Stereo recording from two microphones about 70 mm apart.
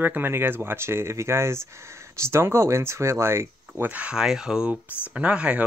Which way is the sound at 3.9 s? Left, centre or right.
Centre.